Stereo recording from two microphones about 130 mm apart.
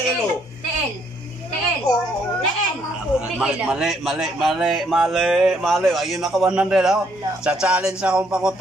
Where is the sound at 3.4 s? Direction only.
5° right (ahead or behind).